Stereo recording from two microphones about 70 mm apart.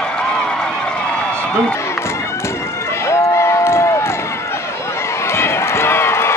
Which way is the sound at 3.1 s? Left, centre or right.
Left.